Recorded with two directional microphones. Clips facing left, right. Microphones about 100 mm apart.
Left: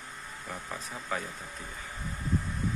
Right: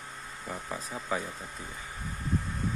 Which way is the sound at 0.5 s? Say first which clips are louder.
Right 3 dB; 10° right (ahead or behind).